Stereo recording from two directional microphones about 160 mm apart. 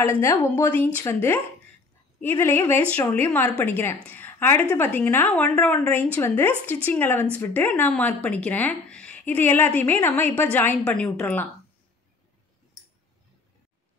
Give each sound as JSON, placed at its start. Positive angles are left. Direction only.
{"t": 0.2, "sound": "speech", "side_deg": 15}